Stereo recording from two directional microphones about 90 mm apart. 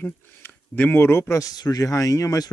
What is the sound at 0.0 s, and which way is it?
Speech, 20° left (ahead or behind).